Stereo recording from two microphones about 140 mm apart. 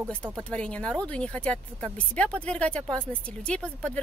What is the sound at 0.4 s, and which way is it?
Speech, 5° left (ahead or behind).